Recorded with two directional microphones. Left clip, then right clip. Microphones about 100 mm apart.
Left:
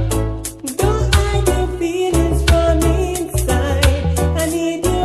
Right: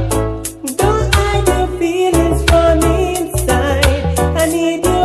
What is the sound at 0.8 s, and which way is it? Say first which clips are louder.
Music: right 4 dB; 20° left (ahead or behind).